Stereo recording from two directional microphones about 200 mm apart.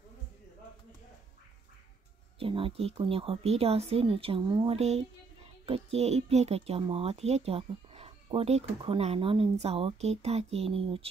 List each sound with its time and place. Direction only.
2.3 s speech: 25° right (ahead or behind)
4.7 s speech: 30° right (ahead or behind)